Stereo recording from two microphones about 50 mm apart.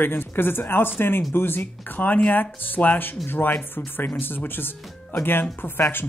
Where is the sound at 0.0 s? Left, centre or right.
Left.